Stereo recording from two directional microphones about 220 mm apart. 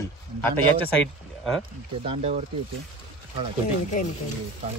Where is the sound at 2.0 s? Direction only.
30° right (ahead or behind).